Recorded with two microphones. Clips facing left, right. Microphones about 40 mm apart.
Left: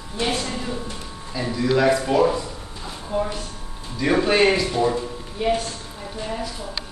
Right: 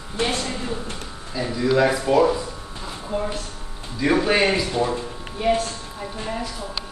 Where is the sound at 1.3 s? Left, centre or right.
Centre.